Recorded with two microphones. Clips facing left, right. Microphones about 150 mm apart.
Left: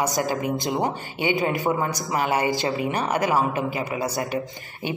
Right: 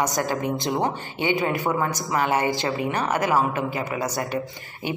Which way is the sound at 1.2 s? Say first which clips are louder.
Even; 20° left (ahead or behind).